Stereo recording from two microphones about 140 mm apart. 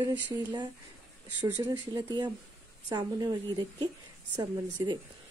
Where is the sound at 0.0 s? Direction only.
30° right (ahead or behind).